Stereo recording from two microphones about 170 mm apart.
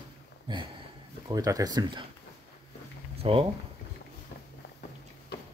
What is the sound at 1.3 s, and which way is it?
Speech, 20° right (ahead or behind).